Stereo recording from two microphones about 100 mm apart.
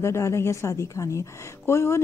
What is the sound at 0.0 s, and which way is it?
A woman's voice, 25° left (ahead or behind).